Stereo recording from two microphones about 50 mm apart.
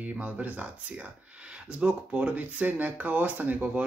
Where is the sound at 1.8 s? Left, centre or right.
Right.